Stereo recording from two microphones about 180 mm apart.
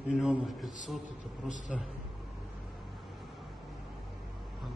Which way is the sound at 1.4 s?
45° left (ahead or behind).